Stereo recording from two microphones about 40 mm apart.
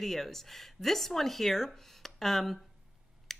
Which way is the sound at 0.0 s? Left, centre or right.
Centre.